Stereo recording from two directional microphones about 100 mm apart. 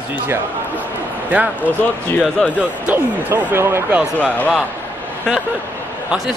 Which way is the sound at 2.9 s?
20° right (ahead or behind).